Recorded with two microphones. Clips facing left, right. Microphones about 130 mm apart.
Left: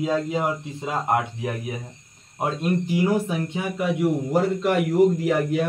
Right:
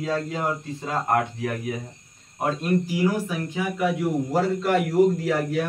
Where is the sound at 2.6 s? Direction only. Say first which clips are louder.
Left 2 dB; 25° left (ahead or behind).